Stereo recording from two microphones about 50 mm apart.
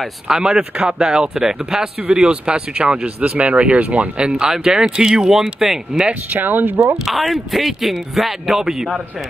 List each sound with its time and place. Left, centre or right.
0.3 s speech: centre
4.4 s speech: centre
6.3 s speech: right
7.1 s speech: centre